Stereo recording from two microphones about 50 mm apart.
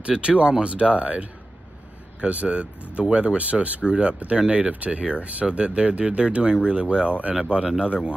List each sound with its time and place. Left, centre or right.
0.0 s speech: centre